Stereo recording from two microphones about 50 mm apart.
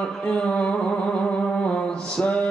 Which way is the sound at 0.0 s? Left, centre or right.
Centre.